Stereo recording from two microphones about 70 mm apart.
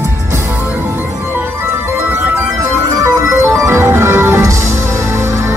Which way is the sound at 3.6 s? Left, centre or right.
Right.